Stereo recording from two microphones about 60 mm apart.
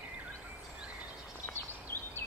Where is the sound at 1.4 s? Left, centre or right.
Left.